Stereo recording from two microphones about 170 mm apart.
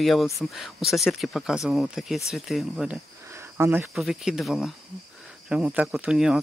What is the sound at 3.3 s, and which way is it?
Cricket, 15° right (ahead or behind).